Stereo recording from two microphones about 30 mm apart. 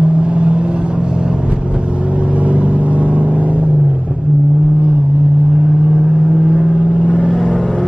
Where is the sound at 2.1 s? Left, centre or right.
Right.